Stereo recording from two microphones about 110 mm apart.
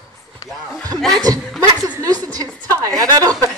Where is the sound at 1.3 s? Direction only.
35° right (ahead or behind).